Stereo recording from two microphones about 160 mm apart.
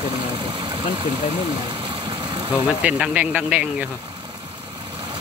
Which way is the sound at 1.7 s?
30° right (ahead or behind).